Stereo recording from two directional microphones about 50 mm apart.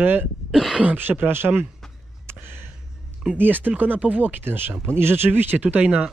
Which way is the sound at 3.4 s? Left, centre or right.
Right.